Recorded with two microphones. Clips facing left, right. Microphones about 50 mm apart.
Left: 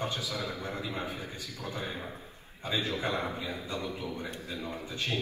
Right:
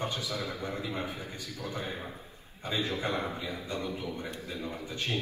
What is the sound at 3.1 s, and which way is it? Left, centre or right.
A man's voice, left.